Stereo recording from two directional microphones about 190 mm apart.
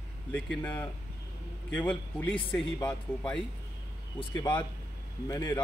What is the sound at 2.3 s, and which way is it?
Speech, 25° left (ahead or behind).